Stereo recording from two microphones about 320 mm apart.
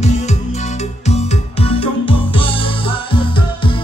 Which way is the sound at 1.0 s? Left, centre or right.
Centre.